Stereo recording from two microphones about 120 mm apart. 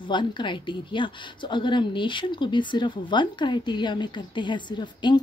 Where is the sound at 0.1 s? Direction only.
40° left (ahead or behind).